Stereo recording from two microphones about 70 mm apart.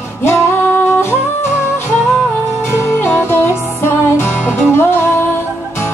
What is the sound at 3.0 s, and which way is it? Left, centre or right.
Music, left.